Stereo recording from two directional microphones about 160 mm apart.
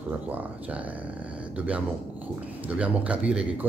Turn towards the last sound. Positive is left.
turn(degrees=-5)  # may be behind; listen again after turning